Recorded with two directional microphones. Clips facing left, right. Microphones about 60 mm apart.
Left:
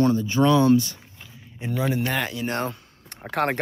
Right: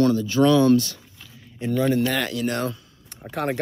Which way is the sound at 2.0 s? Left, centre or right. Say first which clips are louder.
Right 2 dB; left.